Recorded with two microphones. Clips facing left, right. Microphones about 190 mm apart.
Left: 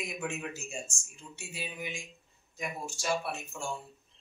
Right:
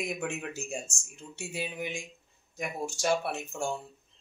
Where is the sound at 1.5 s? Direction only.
55° right (ahead or behind).